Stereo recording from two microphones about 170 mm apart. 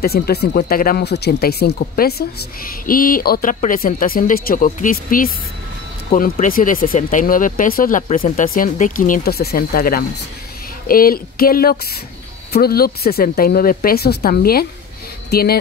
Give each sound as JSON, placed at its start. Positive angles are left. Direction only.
{"t": 0.0, "sound": "speech", "side_deg": 65}
{"t": 2.9, "sound": "speech", "side_deg": 55}
{"t": 6.3, "sound": "speech", "side_deg": 50}